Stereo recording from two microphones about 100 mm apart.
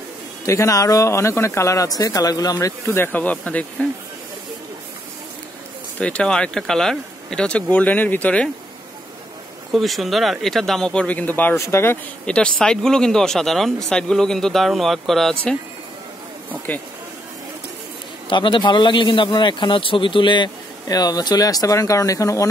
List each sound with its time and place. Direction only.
0.5 s speech: 30° left (ahead or behind)
2.9 s speech: 20° left (ahead or behind)
5.9 s speech: 10° left (ahead or behind)
9.7 s speech: centre (ahead or behind); by 11.5 s 15° left (ahead or behind)
11.5 s speech: 30° left (ahead or behind)
12.3 s speech: 10° left (ahead or behind)
18.3 s a man's voice: 55° left (ahead or behind); by 22.5 s 35° left (ahead or behind)